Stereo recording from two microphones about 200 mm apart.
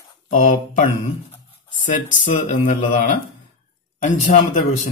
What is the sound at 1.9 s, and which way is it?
Speech, 40° left (ahead or behind).